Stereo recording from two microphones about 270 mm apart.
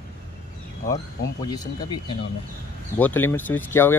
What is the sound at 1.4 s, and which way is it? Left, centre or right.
Speech, centre.